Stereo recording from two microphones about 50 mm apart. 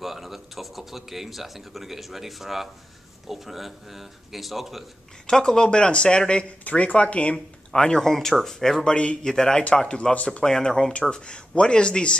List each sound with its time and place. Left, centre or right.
0.0 s speech: centre
5.2 s speech: centre
7.7 s speech: centre
10.4 s speech: centre